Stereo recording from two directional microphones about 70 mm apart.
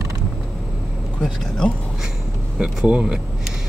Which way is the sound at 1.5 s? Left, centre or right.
Centre.